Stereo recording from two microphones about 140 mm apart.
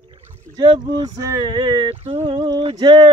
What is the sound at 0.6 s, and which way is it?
Speech, 30° right (ahead or behind).